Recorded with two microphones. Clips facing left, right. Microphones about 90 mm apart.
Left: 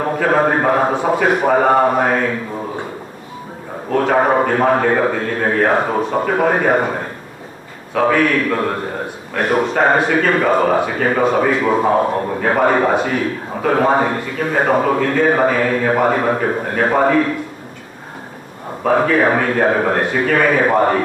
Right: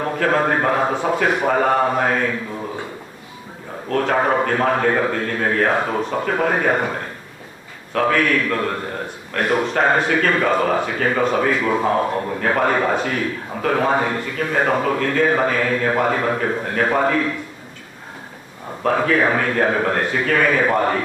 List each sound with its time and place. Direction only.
0.0 s a man's voice: 10° left (ahead or behind)
3.9 s a man's voice: 10° left (ahead or behind)
19.0 s a man's voice: 10° left (ahead or behind)